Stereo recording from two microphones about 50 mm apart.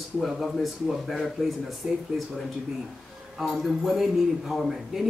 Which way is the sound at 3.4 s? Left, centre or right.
Centre.